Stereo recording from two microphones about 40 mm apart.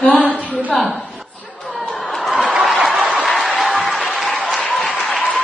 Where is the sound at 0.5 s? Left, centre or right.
Right.